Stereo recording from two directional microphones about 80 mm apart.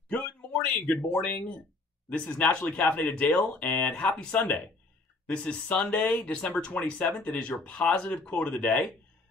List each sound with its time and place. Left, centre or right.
0.1 s speech: centre